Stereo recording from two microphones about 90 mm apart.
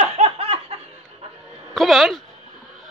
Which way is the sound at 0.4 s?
90° right.